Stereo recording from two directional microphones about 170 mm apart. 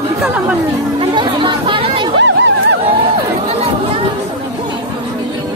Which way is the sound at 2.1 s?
90° right.